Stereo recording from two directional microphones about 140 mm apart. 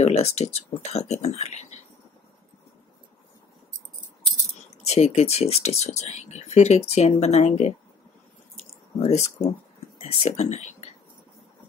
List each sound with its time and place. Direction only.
0.0 s speech: 50° left (ahead or behind)
4.8 s speech: 50° left (ahead or behind)
8.5 s a sound: 50° left (ahead or behind)
9.9 s speech: 50° left (ahead or behind)